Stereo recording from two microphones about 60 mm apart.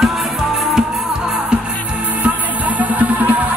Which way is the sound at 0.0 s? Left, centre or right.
Centre.